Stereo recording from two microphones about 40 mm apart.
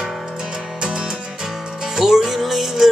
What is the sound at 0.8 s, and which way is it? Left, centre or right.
Music, centre.